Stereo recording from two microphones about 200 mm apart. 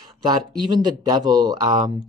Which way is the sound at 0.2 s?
20° right (ahead or behind).